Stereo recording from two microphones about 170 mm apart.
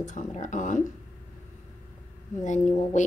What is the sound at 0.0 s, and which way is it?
Speech, 45° left (ahead or behind).